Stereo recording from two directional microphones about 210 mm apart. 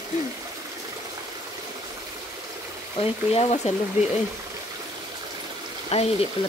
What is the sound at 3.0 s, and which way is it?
Speech, 30° left (ahead or behind).